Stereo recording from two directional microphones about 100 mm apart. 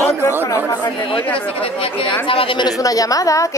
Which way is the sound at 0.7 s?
45° left (ahead or behind).